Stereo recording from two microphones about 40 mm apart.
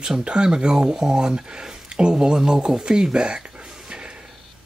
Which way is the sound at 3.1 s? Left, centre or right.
Centre.